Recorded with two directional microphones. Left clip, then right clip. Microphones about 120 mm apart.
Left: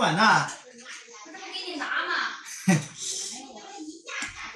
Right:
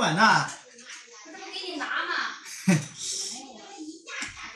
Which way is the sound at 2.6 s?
5° left (ahead or behind).